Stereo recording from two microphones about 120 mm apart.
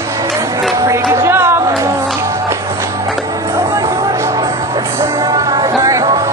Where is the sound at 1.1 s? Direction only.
20° right (ahead or behind).